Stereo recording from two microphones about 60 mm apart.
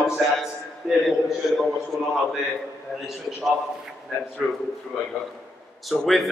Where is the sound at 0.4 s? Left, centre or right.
Centre.